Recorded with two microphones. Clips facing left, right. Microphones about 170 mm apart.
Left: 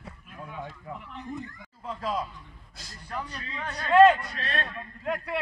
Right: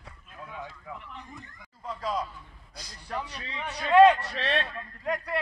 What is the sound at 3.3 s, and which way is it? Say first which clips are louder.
Speech: even; 10° right (ahead or behind).